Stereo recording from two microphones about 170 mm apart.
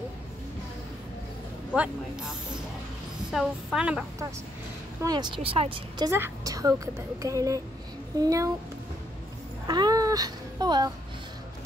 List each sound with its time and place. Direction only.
1.8 s speech: 5° right (ahead or behind)
5.0 s a woman's voice: 25° right (ahead or behind)
6.0 s a woman's voice: 15° right (ahead or behind)
9.7 s speech: 25° right (ahead or behind)